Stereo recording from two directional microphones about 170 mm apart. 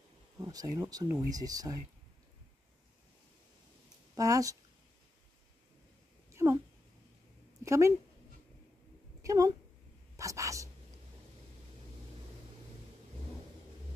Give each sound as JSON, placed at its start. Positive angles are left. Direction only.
{"t": 0.4, "sound": "speech", "side_deg": -20}
{"t": 4.1, "sound": "speech", "side_deg": -20}
{"t": 6.3, "sound": "cat", "side_deg": -15}
{"t": 7.6, "sound": "speech", "side_deg": -15}
{"t": 9.2, "sound": "speech", "side_deg": -20}
{"t": 10.1, "sound": "a sound", "side_deg": -20}